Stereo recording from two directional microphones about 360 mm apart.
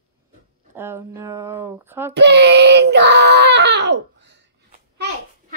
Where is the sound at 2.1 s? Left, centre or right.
Right.